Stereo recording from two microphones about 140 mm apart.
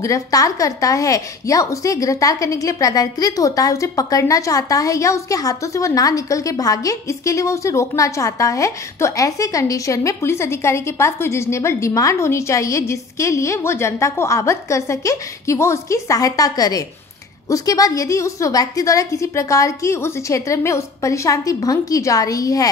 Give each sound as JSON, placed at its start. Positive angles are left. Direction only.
{"t": 0.0, "sound": "a woman's voice", "side_deg": 25}